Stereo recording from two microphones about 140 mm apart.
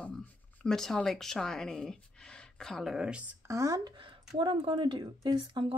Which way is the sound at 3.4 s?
25° right (ahead or behind).